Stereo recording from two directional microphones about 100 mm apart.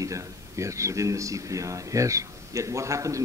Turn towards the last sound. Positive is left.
turn(degrees=-30)  # may be behind; listen again after turning